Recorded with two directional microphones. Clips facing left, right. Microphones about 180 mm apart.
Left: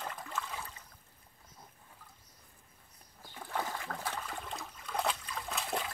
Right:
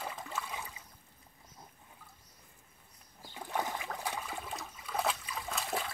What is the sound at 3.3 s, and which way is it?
Toilet flush, 15° right (ahead or behind).